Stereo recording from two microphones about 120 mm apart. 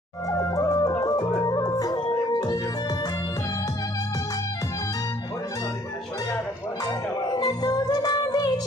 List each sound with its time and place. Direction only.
0.3 s music: 25° left (ahead or behind)
6.9 s music: 35° left (ahead or behind)